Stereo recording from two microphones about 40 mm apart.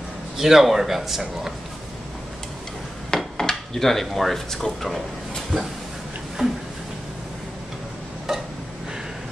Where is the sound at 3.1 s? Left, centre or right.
Centre.